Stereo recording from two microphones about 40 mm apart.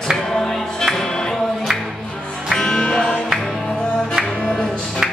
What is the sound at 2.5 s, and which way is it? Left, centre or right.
Music, centre.